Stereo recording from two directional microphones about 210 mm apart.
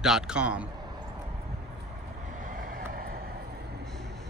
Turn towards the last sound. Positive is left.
turn(degrees=-45)  # may be behind; listen again after turning